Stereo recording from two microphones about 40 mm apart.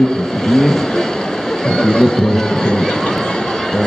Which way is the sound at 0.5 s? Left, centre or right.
Centre.